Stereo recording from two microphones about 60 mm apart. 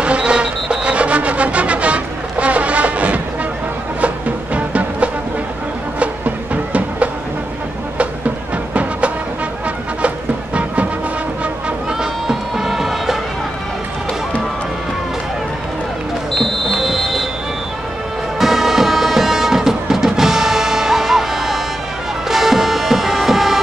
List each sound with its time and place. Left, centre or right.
0.0 s music: centre
4.6 s music: right
10.0 s music: right
12.0 s music: centre
16.3 s music: centre
18.4 s music: centre